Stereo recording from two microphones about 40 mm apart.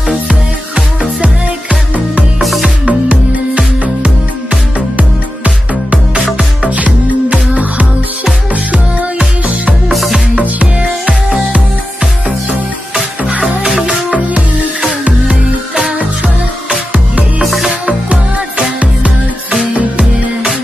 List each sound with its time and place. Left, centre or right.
0.3 s music: right
9.8 s music: centre
10.3 s music: right
12.0 s music: centre
15.7 s music: centre
17.4 s music: centre
17.8 s music: right